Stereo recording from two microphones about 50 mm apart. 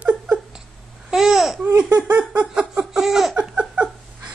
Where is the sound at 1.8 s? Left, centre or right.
Right.